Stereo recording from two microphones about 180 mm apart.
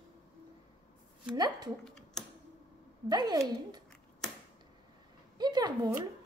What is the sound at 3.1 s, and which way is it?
Speech, 25° right (ahead or behind).